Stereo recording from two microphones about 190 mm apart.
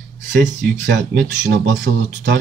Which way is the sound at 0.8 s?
70° right (ahead or behind).